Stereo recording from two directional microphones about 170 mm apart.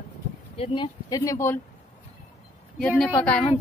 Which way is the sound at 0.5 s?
30° left (ahead or behind).